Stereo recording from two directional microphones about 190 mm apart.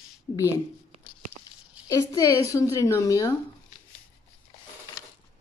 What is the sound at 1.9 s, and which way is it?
A woman's voice, 15° left (ahead or behind).